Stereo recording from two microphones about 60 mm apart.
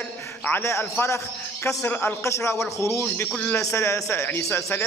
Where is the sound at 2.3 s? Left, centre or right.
Left.